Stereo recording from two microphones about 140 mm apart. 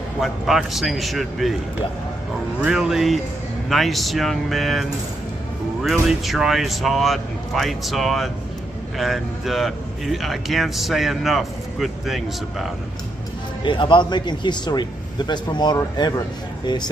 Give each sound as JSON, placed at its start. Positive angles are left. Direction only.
{"t": 0.2, "sound": "speech", "side_deg": 0}
{"t": 2.6, "sound": "speech", "side_deg": -5}
{"t": 13.7, "sound": "speech", "side_deg": 35}